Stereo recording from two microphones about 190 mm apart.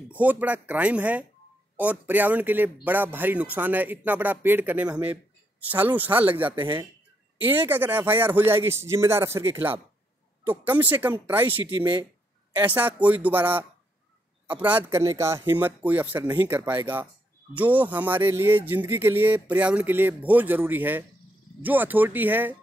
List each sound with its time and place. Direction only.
0.1 s speech: 10° right (ahead or behind)
11.8 s speech: 20° right (ahead or behind)
12.5 s speech: 10° right (ahead or behind)